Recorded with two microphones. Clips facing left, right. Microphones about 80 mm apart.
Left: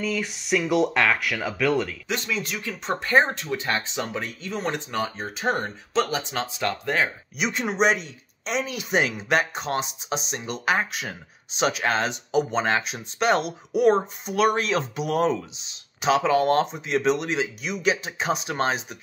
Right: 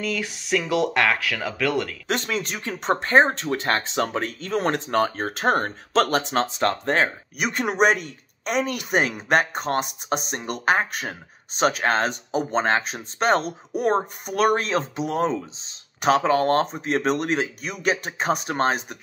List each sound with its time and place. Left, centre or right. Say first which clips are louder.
0.0 s speech: even; right
2.0 s speech: right 3 dB; right
3.5 s speech: right 2 dB; right
6.6 s speech: right 1 dB; right
7.4 s speech: right 2 dB; right
16.0 s speech: right 1 dB; right